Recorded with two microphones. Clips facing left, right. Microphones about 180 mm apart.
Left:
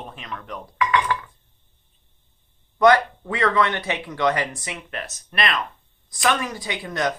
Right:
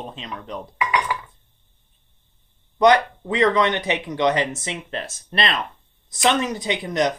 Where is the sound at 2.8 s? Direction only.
20° right (ahead or behind).